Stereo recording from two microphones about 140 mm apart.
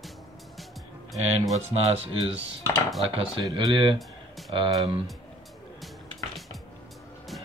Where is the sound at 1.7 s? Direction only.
45° right (ahead or behind).